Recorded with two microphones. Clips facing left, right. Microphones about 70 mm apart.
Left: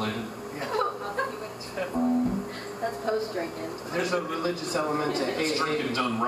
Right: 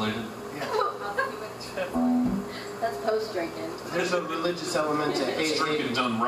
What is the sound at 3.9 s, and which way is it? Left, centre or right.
Speech, left.